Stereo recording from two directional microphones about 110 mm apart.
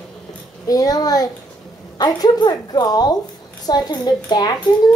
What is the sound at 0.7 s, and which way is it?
A child's voice, 35° left (ahead or behind).